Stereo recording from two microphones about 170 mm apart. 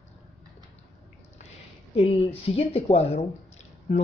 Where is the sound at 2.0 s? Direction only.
35° left (ahead or behind).